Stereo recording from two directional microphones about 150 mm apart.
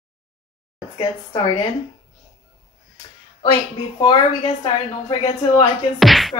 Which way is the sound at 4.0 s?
35° left (ahead or behind).